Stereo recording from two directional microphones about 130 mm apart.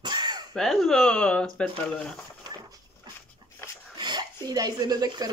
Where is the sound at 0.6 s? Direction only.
Centre (ahead or behind).